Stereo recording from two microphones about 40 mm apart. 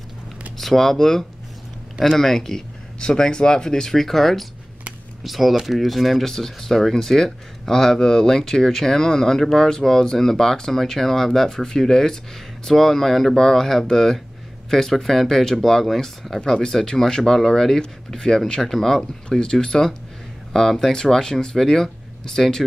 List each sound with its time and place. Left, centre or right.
0.6 s speech: centre
16.5 s speech: centre
18.6 s speech: centre
19.2 s speech: centre